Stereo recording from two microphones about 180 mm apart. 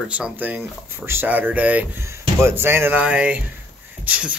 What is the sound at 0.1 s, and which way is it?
Speech, 5° right (ahead or behind).